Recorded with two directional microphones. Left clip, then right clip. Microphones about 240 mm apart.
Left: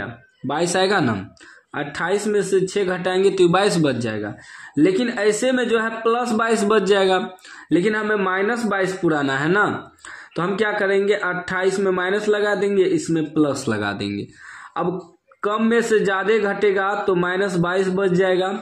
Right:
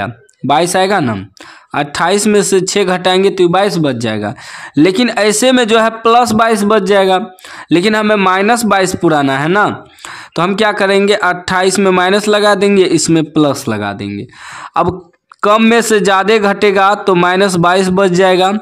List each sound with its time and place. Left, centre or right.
0.0 s speech: right
1.7 s speech: right
7.7 s speech: right
15.4 s speech: right